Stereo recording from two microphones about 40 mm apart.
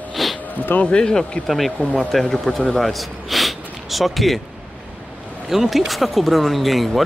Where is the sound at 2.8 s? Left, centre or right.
Centre.